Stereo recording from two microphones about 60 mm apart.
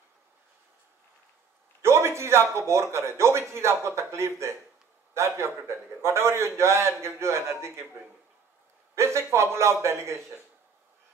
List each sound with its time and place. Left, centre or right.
1.8 s a sound: right
2.5 s a man's voice: right
8.9 s a man's voice: right